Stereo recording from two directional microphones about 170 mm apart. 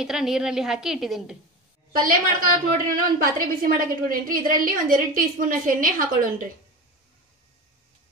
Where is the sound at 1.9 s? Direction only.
55° right (ahead or behind).